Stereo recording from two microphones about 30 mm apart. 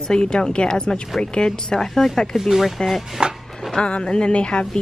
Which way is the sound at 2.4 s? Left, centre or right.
Centre.